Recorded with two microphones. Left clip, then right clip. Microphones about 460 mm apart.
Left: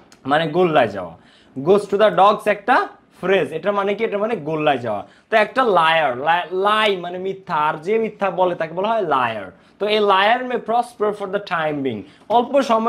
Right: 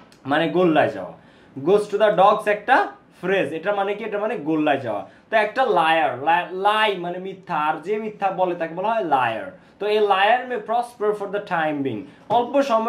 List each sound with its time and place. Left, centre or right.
0.2 s speech: left
10.7 s speech: left